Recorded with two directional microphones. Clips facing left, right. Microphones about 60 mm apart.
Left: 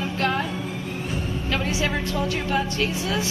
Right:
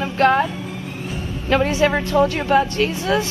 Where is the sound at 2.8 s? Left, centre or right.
Right.